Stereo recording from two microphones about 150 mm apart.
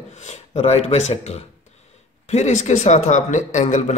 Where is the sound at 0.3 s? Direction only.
45° left (ahead or behind).